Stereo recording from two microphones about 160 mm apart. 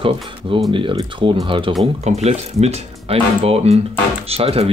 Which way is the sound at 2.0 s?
45° right (ahead or behind).